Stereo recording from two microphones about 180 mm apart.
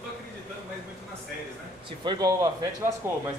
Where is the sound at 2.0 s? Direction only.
20° right (ahead or behind).